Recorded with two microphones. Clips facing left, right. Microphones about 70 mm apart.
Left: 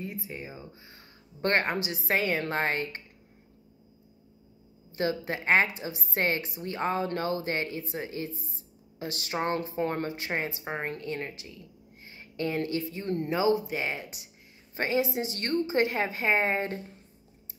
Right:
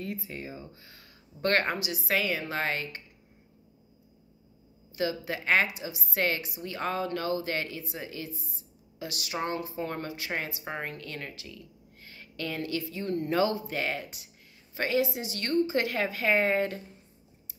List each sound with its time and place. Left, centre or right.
0.0 s a woman's voice: centre; by 3.0 s left
4.9 s a woman's voice: left
10.0 s a woman's voice: left
13.3 s a woman's voice: centre